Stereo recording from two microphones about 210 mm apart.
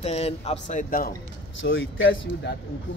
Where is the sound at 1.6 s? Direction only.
65° left (ahead or behind).